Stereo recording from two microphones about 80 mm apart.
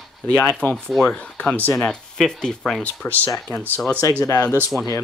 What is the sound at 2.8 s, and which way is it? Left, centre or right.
Speech, left.